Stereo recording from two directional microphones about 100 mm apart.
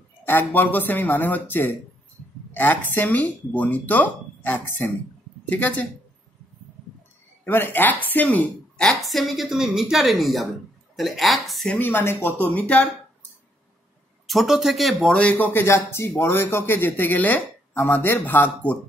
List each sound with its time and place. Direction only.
0.2 s speech: 20° left (ahead or behind)
7.4 s a woman's voice: 20° left (ahead or behind); by 11.7 s centre (ahead or behind)
11.7 s speech: 20° left (ahead or behind)
14.2 s a woman's voice: centre (ahead or behind)
15.4 s speech: 25° left (ahead or behind)